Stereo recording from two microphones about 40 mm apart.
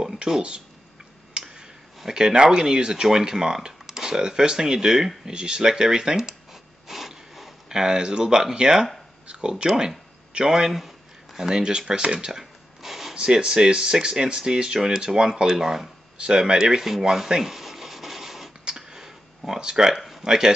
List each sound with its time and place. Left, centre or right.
0.0 s a sound: centre
2.1 s speech: centre
6.9 s a sound: centre
7.7 s speech: centre
13.1 s speech: centre
16.2 s rub: right
18.7 s clicking: centre
20.0 s a sound: centre
20.2 s speech: centre